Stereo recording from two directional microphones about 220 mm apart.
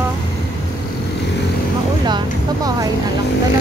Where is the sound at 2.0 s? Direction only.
20° right (ahead or behind).